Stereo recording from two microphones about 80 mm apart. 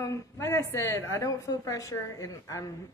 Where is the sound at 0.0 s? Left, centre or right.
Left.